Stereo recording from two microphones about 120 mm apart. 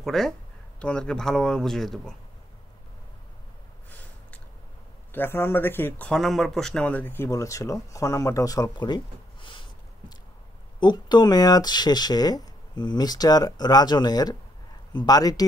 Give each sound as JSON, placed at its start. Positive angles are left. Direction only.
{"t": 0.0, "sound": "speech", "side_deg": 0}
{"t": 3.9, "sound": "a sound", "side_deg": 15}
{"t": 5.1, "sound": "speech", "side_deg": 20}
{"t": 7.2, "sound": "speech", "side_deg": 25}
{"t": 8.7, "sound": "a sound", "side_deg": 40}
{"t": 10.8, "sound": "speech", "side_deg": 35}